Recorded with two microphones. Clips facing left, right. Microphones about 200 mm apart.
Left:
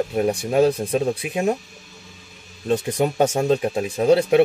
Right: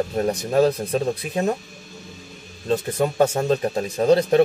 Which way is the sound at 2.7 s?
15° left (ahead or behind).